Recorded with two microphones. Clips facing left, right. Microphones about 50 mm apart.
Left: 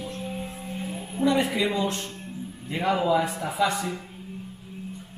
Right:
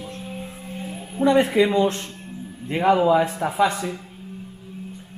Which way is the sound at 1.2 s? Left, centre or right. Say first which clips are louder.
Right 6 dB; right.